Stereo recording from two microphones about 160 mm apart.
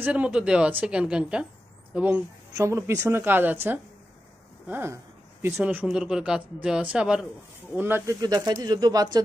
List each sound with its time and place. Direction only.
0.0 s speech: 10° right (ahead or behind)
8.2 s speech: 25° right (ahead or behind)